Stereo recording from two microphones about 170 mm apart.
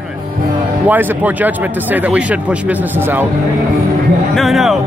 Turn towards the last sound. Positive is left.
turn(degrees=0)  # may be behind; listen again after turning